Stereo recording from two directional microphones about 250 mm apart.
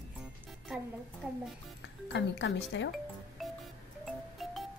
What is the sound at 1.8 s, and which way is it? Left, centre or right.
Speech, left.